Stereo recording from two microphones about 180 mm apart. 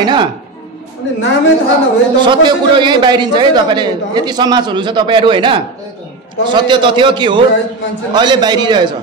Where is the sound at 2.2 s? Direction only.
25° right (ahead or behind).